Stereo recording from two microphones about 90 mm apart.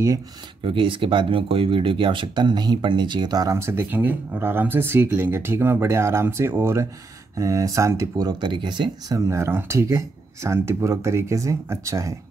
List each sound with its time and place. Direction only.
0.7 s speech: 75° right (ahead or behind); by 3.5 s 45° right (ahead or behind)
3.5 s speech: 25° right (ahead or behind)
8.3 s speech: 60° right (ahead or behind)
9.1 s speech: 30° right (ahead or behind)